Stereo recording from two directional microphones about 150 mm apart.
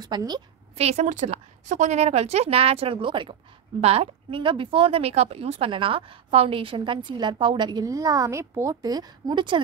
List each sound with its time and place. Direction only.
0.0 s a woman's voice: 25° right (ahead or behind)
0.7 s a woman's voice: 50° right (ahead or behind); by 9.6 s 30° right (ahead or behind)